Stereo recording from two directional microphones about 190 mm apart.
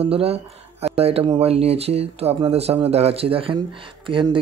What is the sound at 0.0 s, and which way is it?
Speech, 30° right (ahead or behind).